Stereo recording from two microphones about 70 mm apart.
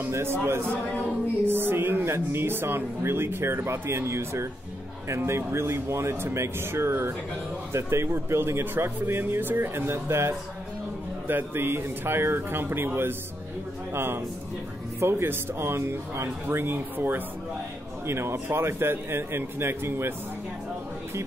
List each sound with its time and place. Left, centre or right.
0.0 s speech: right